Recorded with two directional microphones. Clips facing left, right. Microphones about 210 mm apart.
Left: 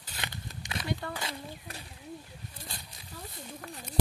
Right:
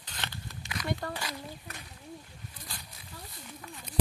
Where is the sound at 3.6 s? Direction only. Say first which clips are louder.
Left 1 dB; 55° left (ahead or behind).